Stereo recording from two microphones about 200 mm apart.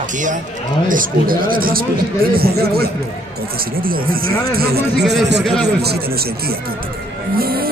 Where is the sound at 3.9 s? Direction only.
45° right (ahead or behind).